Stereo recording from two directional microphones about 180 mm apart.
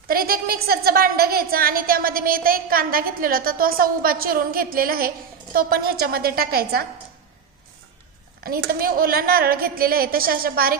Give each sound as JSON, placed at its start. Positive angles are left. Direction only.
{"t": 0.1, "sound": "a woman's voice", "side_deg": -55}
{"t": 8.5, "sound": "a woman's voice", "side_deg": -55}